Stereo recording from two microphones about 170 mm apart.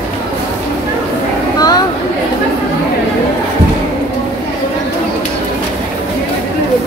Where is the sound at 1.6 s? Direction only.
25° left (ahead or behind).